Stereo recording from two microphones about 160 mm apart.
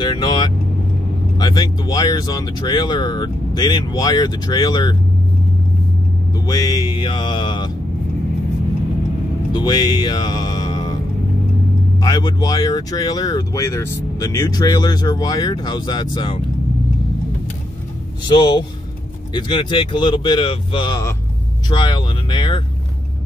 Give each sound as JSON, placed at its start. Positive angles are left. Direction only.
{"t": 0.0, "sound": "speech", "side_deg": 30}
{"t": 6.4, "sound": "speech", "side_deg": 25}
{"t": 9.5, "sound": "speech", "side_deg": 25}
{"t": 12.0, "sound": "speech", "side_deg": 25}
{"t": 18.2, "sound": "speech", "side_deg": 30}